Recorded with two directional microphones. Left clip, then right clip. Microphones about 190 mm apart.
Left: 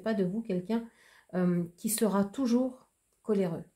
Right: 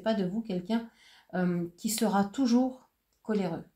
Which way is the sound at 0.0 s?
35° left (ahead or behind).